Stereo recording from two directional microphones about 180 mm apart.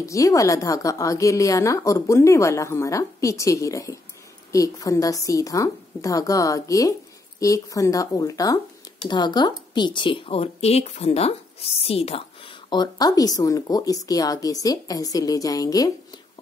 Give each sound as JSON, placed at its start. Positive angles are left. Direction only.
{"t": 0.0, "sound": "a woman's voice", "side_deg": 15}